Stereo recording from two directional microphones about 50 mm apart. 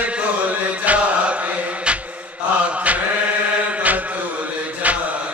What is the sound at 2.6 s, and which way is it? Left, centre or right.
Mantra, right.